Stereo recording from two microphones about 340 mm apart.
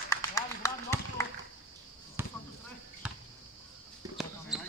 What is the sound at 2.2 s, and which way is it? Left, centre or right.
Basketball bounce, centre.